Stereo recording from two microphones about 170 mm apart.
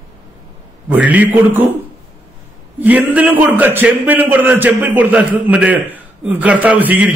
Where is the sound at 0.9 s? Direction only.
10° right (ahead or behind).